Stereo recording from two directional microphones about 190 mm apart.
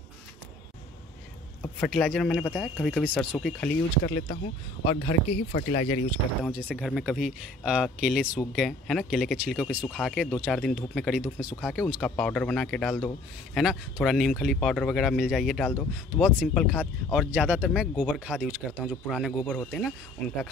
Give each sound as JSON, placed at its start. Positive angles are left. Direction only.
{"t": 1.6, "sound": "speech", "side_deg": 5}
{"t": 4.0, "sound": "speech", "side_deg": 40}
{"t": 6.4, "sound": "speech", "side_deg": -5}